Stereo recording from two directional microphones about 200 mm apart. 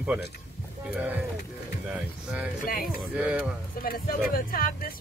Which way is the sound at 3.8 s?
45° left (ahead or behind).